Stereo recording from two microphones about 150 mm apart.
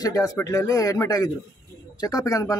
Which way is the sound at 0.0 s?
25° left (ahead or behind).